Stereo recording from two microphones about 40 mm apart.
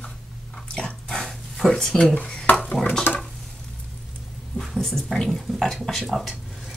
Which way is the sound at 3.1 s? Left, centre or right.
Left.